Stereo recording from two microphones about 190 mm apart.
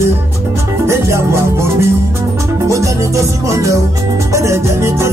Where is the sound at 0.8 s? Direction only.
15° right (ahead or behind).